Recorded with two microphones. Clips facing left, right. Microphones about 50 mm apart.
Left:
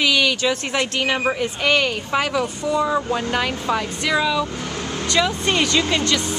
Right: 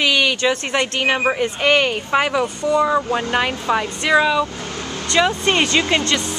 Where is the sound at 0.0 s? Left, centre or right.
Centre.